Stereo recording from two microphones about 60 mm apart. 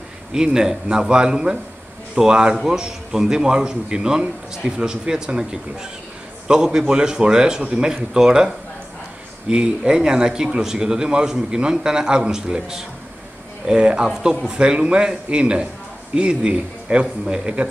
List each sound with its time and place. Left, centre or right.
0.3 s a man's voice: centre
9.5 s a man's voice: centre